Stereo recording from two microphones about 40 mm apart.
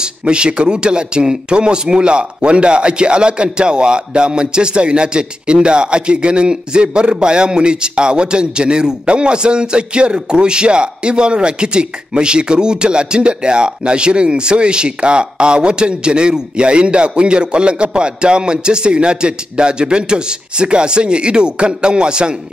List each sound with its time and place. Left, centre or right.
0.0 s speech: right